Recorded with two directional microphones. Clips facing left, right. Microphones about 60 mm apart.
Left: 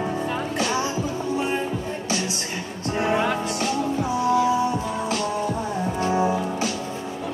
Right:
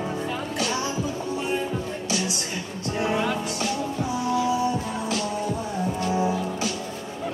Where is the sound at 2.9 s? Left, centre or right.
Left.